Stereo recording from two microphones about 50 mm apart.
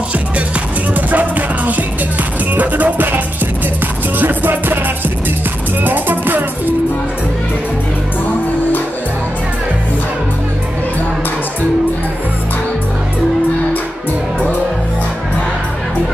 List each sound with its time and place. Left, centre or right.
0.9 s music: right
4.2 s music: right
5.9 s music: right